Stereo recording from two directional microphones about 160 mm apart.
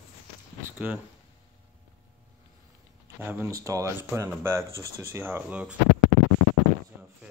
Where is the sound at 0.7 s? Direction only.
10° right (ahead or behind).